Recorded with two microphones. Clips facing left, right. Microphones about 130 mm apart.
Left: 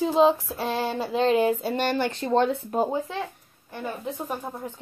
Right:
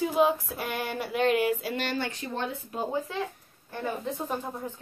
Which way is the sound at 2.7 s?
50° left (ahead or behind).